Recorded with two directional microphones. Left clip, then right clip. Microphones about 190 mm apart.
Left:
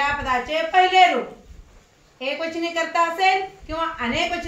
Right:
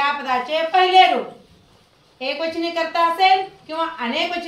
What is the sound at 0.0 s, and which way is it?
A woman's voice, 15° right (ahead or behind).